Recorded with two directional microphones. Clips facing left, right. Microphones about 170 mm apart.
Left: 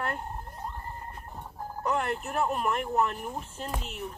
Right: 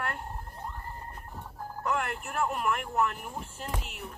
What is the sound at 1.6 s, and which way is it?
Speech, 20° left (ahead or behind).